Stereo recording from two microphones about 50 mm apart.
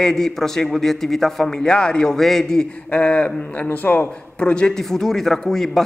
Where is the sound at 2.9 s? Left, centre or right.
Left.